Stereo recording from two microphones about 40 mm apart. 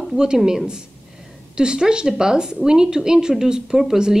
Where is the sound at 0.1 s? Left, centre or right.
Centre.